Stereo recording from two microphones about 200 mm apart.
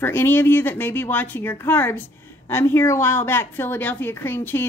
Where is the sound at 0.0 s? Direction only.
10° left (ahead or behind).